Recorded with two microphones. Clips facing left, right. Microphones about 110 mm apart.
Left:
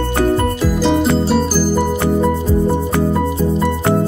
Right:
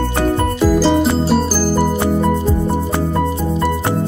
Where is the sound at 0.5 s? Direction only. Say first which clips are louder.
Right 2 dB; centre (ahead or behind).